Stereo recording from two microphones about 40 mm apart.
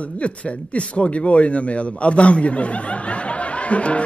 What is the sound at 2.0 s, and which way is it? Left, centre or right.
Speech, left.